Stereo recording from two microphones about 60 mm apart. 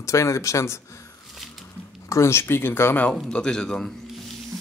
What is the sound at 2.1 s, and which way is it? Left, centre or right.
Speech, left.